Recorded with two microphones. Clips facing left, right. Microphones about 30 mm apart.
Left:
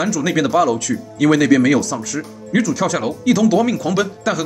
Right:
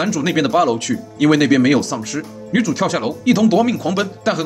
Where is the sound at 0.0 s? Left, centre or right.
Right.